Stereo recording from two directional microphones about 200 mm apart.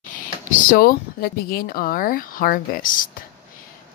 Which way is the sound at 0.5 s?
45° left (ahead or behind).